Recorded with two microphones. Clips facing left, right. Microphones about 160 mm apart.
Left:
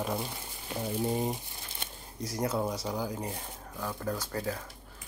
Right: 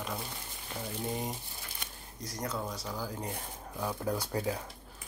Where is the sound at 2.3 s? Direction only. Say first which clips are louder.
Left 6 dB; 30° left (ahead or behind).